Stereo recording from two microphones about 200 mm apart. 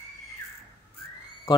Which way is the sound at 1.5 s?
25° left (ahead or behind).